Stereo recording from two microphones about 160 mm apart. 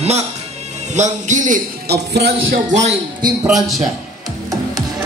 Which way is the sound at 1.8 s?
90° right.